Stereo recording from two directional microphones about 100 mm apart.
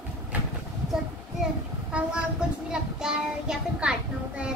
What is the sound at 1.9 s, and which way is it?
A child's voice, 10° right (ahead or behind).